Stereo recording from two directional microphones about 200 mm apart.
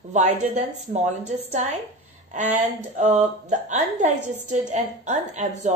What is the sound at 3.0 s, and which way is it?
A woman's voice, 35° right (ahead or behind).